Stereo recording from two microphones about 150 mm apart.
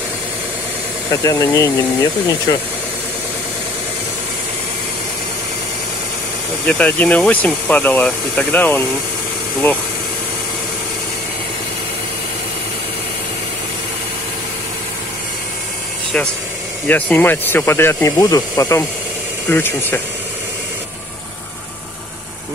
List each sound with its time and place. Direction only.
1.2 s speech: 20° left (ahead or behind)
6.6 s speech: 10° left (ahead or behind)
16.8 s speech: 10° left (ahead or behind)